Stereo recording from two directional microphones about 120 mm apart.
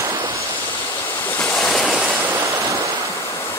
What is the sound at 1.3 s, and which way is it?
Waves, 5° left (ahead or behind).